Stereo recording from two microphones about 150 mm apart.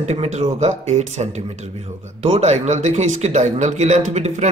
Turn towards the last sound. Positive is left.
turn(degrees=-50)  # may be behind; listen again after turning